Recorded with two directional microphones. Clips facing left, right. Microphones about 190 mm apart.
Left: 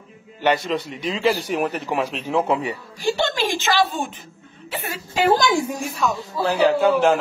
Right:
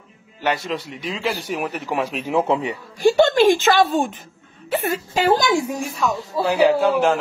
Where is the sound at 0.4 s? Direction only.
Centre (ahead or behind).